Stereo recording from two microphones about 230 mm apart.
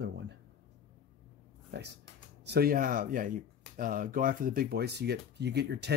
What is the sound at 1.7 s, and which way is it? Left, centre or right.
Speech, right.